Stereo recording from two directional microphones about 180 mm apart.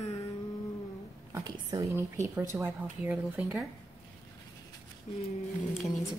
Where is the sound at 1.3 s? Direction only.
20° right (ahead or behind).